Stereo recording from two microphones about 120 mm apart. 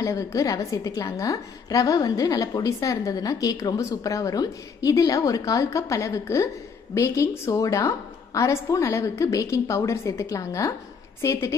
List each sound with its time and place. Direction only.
0.0 s a woman's voice: 25° left (ahead or behind)